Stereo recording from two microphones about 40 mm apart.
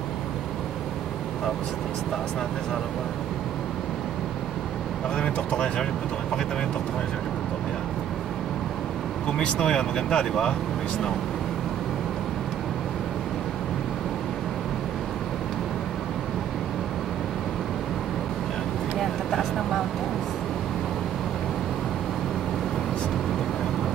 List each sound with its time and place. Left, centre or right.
5.1 s speech: left
9.4 s speech: centre
18.9 s vehicle: centre